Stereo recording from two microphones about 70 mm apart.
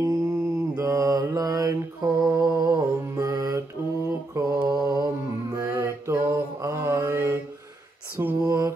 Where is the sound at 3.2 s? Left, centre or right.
Right.